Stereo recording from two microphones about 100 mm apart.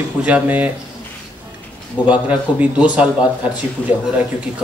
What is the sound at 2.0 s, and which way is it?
Speech, 15° right (ahead or behind).